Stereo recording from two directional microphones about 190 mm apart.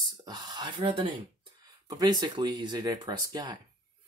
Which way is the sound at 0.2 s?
20° right (ahead or behind).